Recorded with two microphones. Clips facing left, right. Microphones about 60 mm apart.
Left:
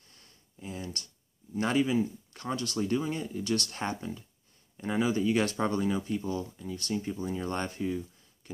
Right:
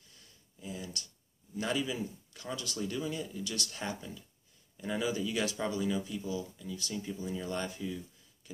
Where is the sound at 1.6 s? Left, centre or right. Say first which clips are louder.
Left 7 dB; left.